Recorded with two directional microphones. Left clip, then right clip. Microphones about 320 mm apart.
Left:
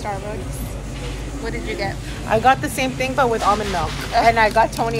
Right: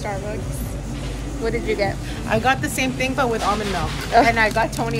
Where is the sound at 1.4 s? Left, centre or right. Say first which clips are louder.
Right 4 dB; centre.